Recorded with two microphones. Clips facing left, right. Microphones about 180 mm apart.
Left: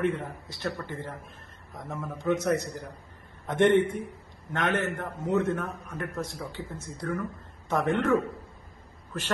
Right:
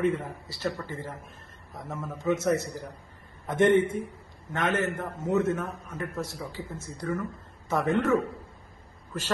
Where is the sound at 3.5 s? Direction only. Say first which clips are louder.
Even; 20° left (ahead or behind).